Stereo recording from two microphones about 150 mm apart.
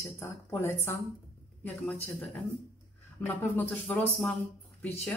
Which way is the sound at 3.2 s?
15° left (ahead or behind).